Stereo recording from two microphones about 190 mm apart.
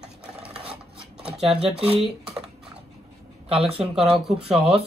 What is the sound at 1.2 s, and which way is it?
Speech, centre (ahead or behind).